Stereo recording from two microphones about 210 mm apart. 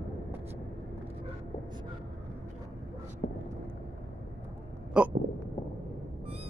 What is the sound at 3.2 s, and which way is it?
Vehicle, 40° left (ahead or behind).